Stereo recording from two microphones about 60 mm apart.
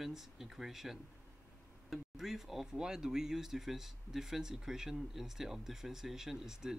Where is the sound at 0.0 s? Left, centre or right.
Centre.